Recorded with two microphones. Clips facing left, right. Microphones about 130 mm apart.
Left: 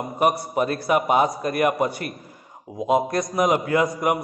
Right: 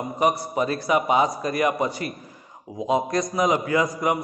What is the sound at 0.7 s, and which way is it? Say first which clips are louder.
A man's voice: even; 55° left (ahead or behind).